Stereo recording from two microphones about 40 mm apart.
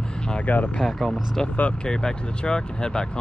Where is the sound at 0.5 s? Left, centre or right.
Left.